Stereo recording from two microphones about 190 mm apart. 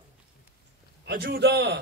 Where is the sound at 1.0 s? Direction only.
55° right (ahead or behind).